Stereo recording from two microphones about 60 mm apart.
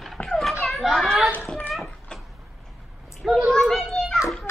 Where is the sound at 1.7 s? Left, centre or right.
Centre.